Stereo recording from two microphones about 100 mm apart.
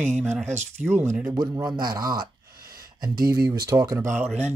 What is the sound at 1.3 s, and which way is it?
Speech, 35° right (ahead or behind).